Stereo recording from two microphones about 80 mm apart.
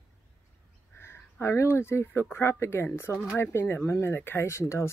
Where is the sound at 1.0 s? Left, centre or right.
Left.